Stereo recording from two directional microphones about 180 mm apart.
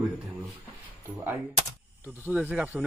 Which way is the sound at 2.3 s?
10° right (ahead or behind).